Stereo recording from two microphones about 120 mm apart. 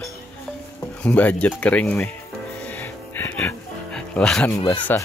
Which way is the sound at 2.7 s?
15° left (ahead or behind).